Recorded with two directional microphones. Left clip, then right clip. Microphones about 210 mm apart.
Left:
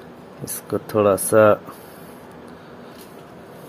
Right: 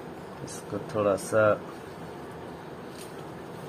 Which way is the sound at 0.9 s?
45° left (ahead or behind).